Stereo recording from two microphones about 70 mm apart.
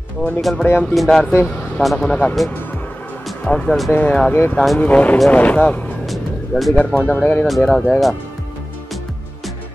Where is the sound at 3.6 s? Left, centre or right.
Centre.